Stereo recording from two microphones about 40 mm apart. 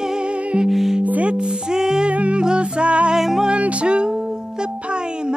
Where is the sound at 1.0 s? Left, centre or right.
Right.